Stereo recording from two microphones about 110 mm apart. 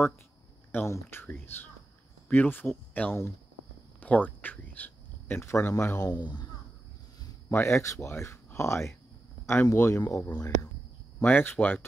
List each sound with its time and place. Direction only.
0.7 s speech: 25° left (ahead or behind)
4.0 s cricket: 15° left (ahead or behind)
5.5 s speech: 25° left (ahead or behind)
6.2 s speech: 40° left (ahead or behind)
7.4 s speech: 25° left (ahead or behind)